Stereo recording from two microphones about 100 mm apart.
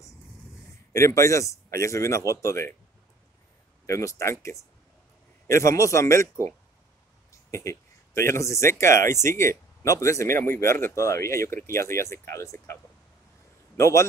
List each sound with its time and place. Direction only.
0.9 s speech: 30° left (ahead or behind)
3.8 s speech: 30° left (ahead or behind)
7.5 s speech: 25° left (ahead or behind)
13.7 s a man's voice: 30° left (ahead or behind)